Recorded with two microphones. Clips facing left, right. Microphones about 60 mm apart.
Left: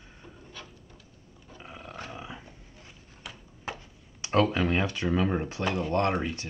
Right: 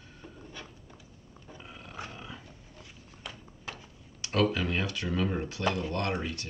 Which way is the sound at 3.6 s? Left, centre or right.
Left.